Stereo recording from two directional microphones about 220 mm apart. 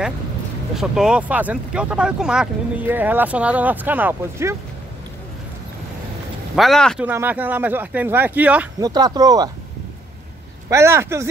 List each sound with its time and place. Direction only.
0.7 s speech: centre (ahead or behind)
6.5 s speech: centre (ahead or behind)
7.1 s speech: 10° right (ahead or behind)
8.8 s speech: 20° right (ahead or behind)
10.7 s speech: 10° right (ahead or behind)